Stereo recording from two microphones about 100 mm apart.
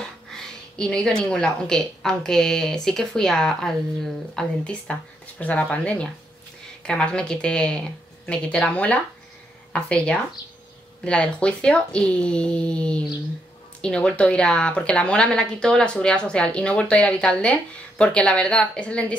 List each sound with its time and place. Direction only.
0.3 s a woman's voice: 5° left (ahead or behind)